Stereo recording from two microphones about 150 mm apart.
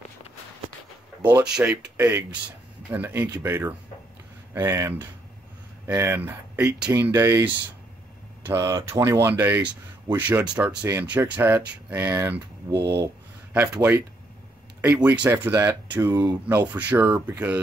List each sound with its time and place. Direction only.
1.4 s speech: 5° right (ahead or behind)
15.0 s speech: 10° right (ahead or behind)